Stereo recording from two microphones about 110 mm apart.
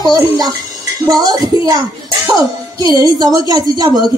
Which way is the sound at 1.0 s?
35° right (ahead or behind).